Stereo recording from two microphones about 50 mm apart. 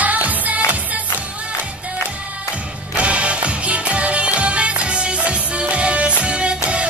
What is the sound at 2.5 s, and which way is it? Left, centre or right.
Music, right.